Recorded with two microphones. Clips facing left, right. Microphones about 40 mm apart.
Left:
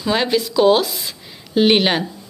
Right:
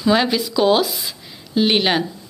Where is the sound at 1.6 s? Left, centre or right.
Centre.